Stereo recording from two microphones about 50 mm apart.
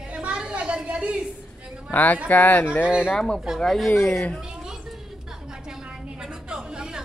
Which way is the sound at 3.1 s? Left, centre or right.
Centre.